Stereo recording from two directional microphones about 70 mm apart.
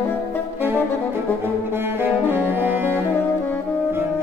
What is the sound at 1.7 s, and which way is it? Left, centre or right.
Brass instrument, right.